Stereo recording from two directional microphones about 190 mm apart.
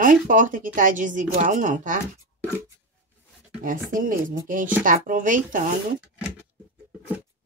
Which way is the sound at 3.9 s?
45° right (ahead or behind).